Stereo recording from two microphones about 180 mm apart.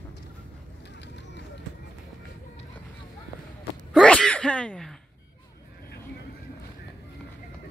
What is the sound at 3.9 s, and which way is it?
Sneeze, 5° left (ahead or behind).